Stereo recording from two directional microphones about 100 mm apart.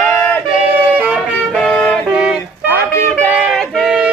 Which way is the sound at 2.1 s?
5° right (ahead or behind).